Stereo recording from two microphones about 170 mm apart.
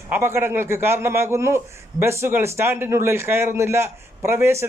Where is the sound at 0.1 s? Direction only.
15° right (ahead or behind).